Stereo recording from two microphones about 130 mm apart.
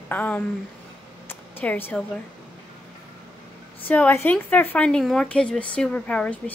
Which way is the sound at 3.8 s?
15° left (ahead or behind).